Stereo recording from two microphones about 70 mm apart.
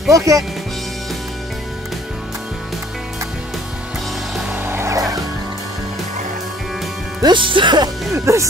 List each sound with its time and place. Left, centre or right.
0.1 s speech: right
4.6 s music: right
4.9 s music: right
7.2 s speech: right
8.1 s speech: right